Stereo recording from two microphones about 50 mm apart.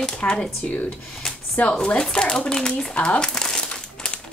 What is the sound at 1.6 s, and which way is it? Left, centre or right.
Chopping, left.